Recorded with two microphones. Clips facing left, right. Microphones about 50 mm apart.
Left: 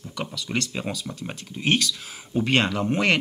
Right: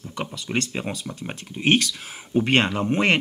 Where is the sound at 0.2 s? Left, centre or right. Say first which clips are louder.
Right 1 dB; centre.